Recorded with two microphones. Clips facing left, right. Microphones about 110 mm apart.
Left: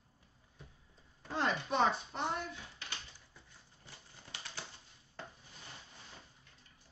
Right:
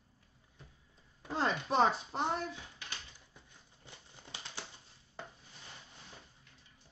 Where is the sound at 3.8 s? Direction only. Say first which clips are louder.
Right 2 dB; 20° right (ahead or behind).